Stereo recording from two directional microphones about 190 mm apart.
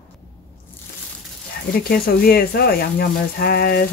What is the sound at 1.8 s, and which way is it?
Speech, 55° left (ahead or behind).